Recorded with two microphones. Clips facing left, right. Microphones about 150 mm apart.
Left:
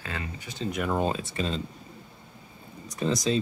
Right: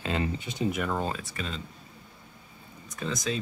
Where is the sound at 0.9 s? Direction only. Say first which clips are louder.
Left 4 dB; 20° left (ahead or behind).